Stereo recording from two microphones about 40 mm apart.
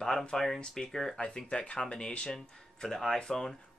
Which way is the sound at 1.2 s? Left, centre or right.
Left.